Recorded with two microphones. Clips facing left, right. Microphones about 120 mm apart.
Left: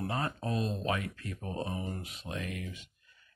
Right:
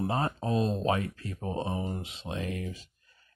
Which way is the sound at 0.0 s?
30° right (ahead or behind).